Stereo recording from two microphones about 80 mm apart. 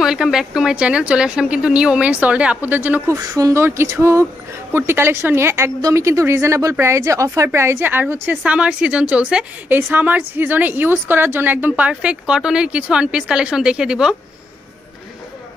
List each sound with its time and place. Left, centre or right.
0.0 s speech: centre; by 3.0 s right
3.1 s speech: right
3.6 s a woman's voice: right; by 9.5 s centre
9.7 s a woman's voice: right; by 14.1 s centre